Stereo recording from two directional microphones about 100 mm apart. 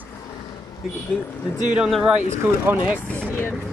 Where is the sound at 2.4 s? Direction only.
20° right (ahead or behind).